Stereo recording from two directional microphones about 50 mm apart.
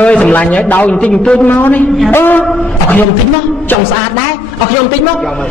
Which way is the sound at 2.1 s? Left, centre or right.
Left.